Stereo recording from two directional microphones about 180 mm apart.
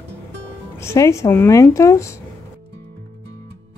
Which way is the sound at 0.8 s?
15° left (ahead or behind).